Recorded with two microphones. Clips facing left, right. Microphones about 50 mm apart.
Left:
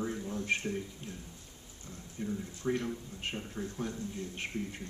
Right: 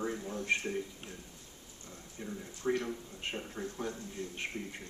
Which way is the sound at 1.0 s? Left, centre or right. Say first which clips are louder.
Left 2 dB; right.